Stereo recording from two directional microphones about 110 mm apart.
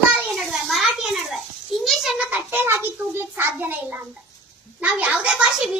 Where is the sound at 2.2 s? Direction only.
15° right (ahead or behind).